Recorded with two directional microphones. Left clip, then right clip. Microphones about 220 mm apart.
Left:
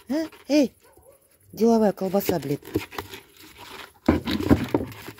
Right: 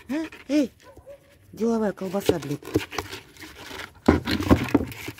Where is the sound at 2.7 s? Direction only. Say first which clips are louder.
Right 3 dB; 20° right (ahead or behind).